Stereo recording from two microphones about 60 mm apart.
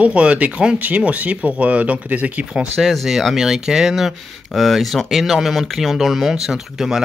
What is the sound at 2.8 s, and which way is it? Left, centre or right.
Speech, centre.